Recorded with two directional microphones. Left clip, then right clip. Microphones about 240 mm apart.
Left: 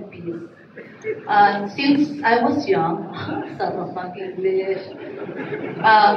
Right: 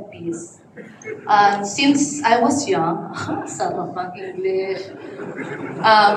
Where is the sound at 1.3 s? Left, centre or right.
Centre.